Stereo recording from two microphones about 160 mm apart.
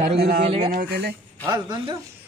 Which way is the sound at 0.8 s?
80° right.